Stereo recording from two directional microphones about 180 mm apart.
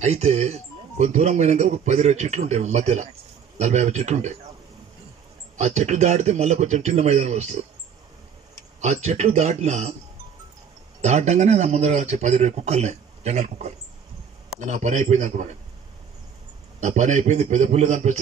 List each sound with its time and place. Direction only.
0.0 s speech: 40° right (ahead or behind)
5.6 s speech: 40° right (ahead or behind)
8.8 s speech: 40° right (ahead or behind)
11.0 s speech: 40° right (ahead or behind)
16.8 s speech: 40° right (ahead or behind)